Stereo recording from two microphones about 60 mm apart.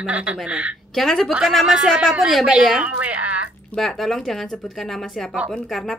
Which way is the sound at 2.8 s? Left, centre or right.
Right.